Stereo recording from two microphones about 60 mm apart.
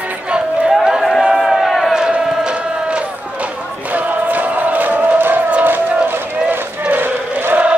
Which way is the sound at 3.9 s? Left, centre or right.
Right.